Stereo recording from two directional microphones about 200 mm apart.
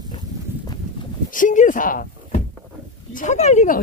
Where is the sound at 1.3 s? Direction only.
40° left (ahead or behind).